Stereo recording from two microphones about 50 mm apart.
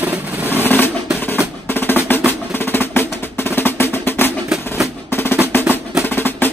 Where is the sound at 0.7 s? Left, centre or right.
Left.